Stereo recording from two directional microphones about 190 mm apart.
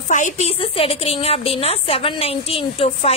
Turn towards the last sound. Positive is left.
turn(degrees=30)  # may be behind; listen again after turning